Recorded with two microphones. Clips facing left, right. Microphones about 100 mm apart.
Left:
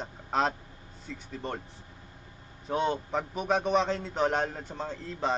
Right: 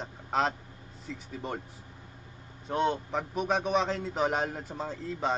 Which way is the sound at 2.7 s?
Centre (ahead or behind).